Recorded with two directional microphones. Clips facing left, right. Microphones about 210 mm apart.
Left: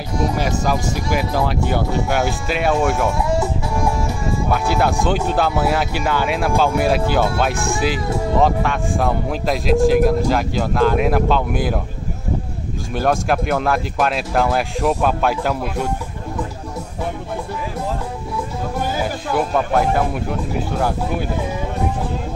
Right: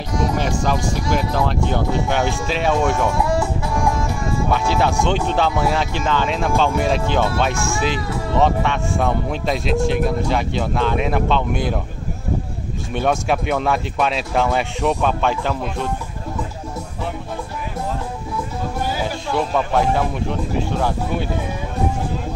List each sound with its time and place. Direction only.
0.4 s speech: 5° left (ahead or behind)
4.5 s speech: 5° left (ahead or behind)
7.5 s speech: 35° left (ahead or behind)
7.8 s speech: 5° left (ahead or behind)
12.9 s speech: centre (ahead or behind)
19.3 s speech: 5° left (ahead or behind)